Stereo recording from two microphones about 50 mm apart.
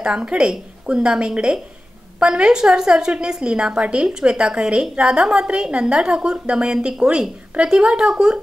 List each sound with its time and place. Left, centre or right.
0.0 s a woman's voice: right